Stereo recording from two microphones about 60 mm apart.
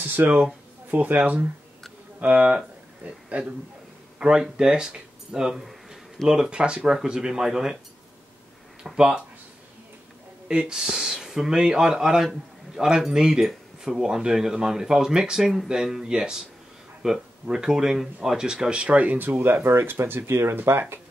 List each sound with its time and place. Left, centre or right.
0.0 s speech: right; by 7.7 s centre
8.8 s speech: centre
10.5 s speech: centre; by 20.5 s right